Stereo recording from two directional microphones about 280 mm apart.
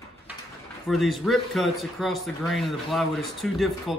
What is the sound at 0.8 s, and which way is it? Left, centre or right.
Speech, centre.